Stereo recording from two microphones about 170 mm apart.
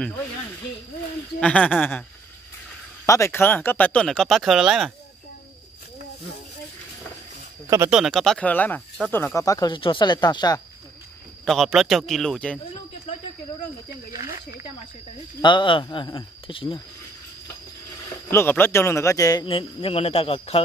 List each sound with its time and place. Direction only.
1.4 s speech: 5° left (ahead or behind)
3.1 s speech: 15° left (ahead or behind); by 4.9 s centre (ahead or behind)
7.9 s speech: centre (ahead or behind); by 10.6 s 25° left (ahead or behind)
11.4 s speech: centre (ahead or behind)
15.4 s speech: 30° left (ahead or behind)
18.3 s speech: 15° left (ahead or behind); by 20.6 s 35° left (ahead or behind)